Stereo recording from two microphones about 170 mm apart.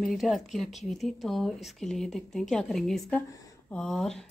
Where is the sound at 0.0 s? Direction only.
Centre (ahead or behind).